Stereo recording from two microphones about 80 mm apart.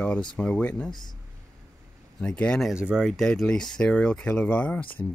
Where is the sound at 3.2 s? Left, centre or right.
Centre.